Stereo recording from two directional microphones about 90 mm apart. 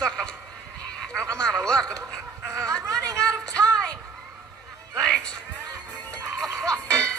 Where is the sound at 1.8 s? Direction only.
35° right (ahead or behind).